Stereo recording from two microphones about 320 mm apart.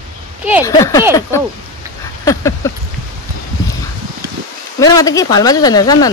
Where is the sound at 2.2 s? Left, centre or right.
Centre.